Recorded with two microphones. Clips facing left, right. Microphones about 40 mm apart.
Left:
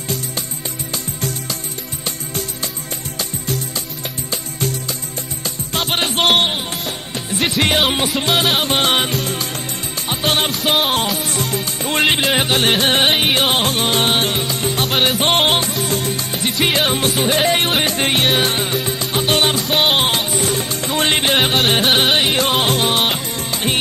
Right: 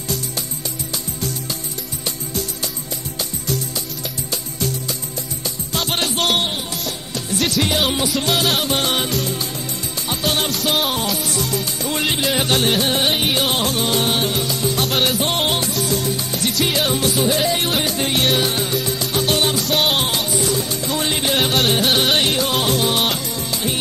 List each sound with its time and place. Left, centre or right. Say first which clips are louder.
5.8 s music: left 3 dB; left
15.1 s music: left 4 dB; left
20.6 s music: left 3 dB; left
22.5 s music: left 2 dB; left
23.3 s music: left 3 dB; left